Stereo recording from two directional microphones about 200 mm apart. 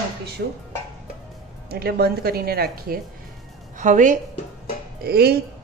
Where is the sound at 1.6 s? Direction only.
50° right (ahead or behind).